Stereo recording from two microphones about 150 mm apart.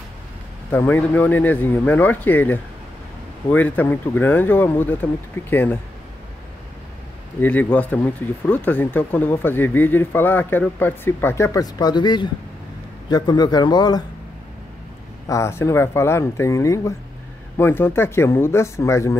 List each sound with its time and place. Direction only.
0.7 s speech: 15° left (ahead or behind)
7.3 s speech: 10° left (ahead or behind); by 14.0 s 25° left (ahead or behind)
15.2 s speech: 20° left (ahead or behind)